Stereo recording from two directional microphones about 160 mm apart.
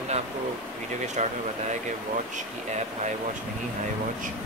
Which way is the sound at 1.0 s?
45° right (ahead or behind).